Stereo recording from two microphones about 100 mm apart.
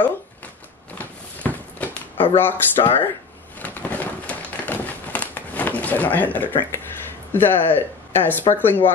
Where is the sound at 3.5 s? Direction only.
15° left (ahead or behind).